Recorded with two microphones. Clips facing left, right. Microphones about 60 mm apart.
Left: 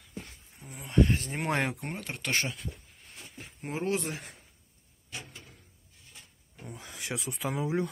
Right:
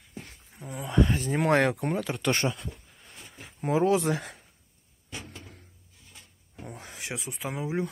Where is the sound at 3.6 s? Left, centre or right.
Right.